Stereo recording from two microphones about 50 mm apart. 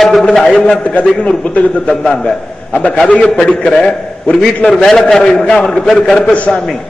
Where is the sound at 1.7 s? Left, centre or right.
Centre.